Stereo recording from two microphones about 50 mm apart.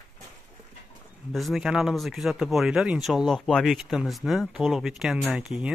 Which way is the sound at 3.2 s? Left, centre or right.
Centre.